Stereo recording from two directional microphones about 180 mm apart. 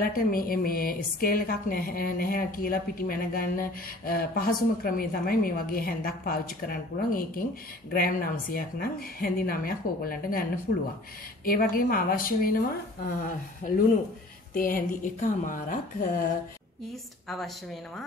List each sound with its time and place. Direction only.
0.0 s a woman's voice: 55° left (ahead or behind)